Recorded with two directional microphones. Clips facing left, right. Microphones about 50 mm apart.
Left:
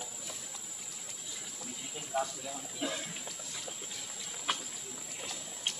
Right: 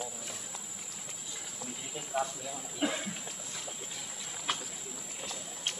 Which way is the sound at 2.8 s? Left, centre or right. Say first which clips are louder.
Right 5 dB; right.